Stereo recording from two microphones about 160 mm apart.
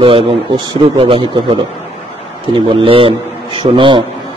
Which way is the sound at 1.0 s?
35° right (ahead or behind).